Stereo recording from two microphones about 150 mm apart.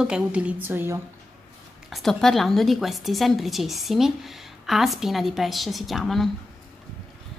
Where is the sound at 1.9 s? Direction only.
Centre (ahead or behind).